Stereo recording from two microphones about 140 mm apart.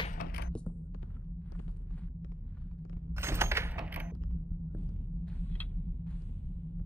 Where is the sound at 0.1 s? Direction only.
75° left (ahead or behind).